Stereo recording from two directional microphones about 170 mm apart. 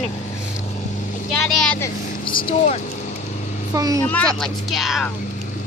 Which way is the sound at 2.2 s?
30° left (ahead or behind).